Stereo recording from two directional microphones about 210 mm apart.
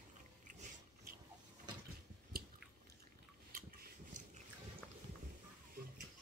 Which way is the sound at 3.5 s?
40° right (ahead or behind).